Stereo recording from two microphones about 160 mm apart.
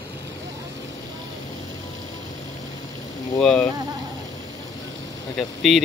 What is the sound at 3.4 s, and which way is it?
Speech, 5° left (ahead or behind).